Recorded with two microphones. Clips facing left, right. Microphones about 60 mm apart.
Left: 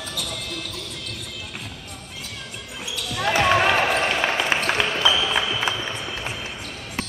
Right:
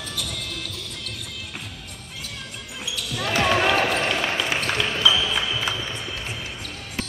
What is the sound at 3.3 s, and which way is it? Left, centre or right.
Basketball bounce, centre.